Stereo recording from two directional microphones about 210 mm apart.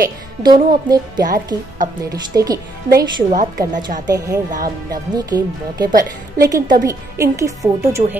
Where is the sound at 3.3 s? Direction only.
35° right (ahead or behind).